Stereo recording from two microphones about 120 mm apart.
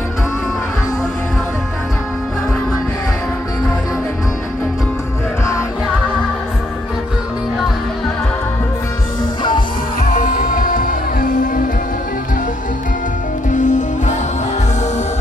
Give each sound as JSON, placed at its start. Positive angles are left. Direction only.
{"t": 13.5, "sound": "music", "side_deg": 90}